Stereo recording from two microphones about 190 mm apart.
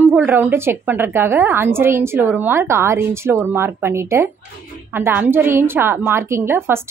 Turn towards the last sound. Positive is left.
turn(degrees=-10)  # may be behind; listen again after turning